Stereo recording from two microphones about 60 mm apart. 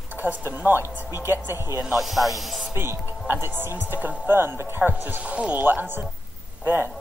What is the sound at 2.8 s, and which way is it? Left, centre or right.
Speech, right.